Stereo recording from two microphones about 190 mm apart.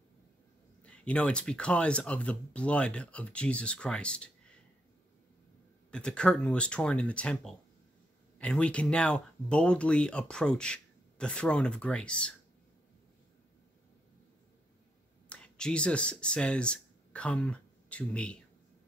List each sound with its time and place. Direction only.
0.8 s speech: 5° left (ahead or behind)
5.9 s speech: 5° left (ahead or behind)
15.2 s speech: 5° left (ahead or behind)